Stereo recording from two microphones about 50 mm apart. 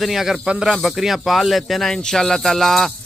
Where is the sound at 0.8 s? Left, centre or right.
Centre.